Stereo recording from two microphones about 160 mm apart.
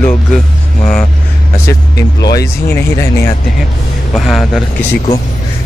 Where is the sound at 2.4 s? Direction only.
15° left (ahead or behind).